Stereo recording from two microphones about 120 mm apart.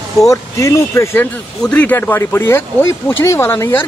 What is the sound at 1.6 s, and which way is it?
Speech, 10° left (ahead or behind).